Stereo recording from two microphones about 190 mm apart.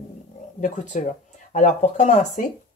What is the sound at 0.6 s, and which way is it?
Speech, 40° left (ahead or behind).